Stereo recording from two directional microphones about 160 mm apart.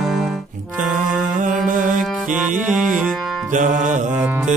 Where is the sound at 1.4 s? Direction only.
55° right (ahead or behind).